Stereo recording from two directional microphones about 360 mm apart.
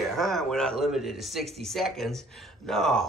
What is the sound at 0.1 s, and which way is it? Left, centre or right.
Speech, centre.